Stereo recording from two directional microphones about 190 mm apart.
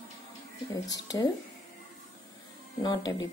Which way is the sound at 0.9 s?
20° left (ahead or behind).